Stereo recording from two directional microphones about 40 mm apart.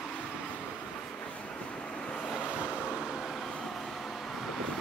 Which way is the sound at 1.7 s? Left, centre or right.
Left.